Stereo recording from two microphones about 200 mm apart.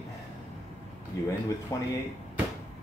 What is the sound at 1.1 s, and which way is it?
Speech, 15° left (ahead or behind).